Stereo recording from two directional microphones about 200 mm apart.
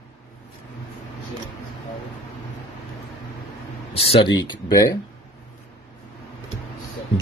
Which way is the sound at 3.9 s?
30° left (ahead or behind).